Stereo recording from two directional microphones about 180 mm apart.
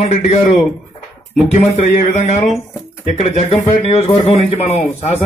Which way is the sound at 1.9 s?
40° left (ahead or behind).